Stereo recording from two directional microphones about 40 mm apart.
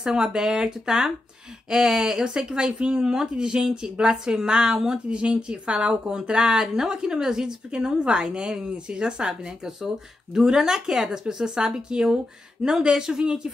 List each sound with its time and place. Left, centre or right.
0.0 s a woman's voice: centre